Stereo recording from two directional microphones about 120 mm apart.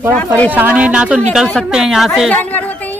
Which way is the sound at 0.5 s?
15° right (ahead or behind).